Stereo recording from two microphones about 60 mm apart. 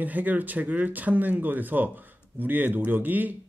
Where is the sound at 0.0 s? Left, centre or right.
Right.